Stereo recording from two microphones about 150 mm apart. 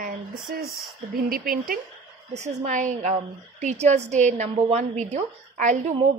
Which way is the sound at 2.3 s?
50° right (ahead or behind).